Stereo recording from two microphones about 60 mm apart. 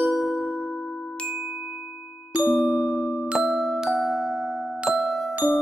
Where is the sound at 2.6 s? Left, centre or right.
Centre.